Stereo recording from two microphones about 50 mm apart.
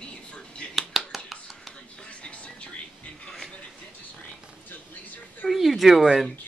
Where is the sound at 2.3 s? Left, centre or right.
Left.